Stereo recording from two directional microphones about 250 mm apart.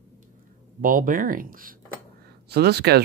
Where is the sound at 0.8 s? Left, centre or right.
Right.